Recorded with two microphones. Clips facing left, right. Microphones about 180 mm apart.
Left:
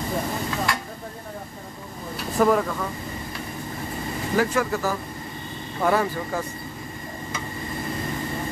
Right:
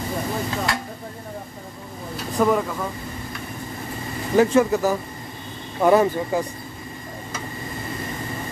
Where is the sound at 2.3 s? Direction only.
Centre (ahead or behind).